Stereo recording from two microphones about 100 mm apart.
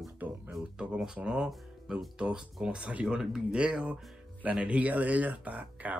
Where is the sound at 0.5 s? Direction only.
5° right (ahead or behind).